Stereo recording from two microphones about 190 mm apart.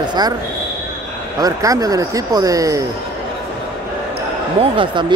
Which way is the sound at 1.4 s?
20° right (ahead or behind).